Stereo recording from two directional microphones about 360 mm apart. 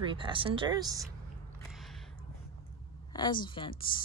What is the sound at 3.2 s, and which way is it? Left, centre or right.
Speech, centre.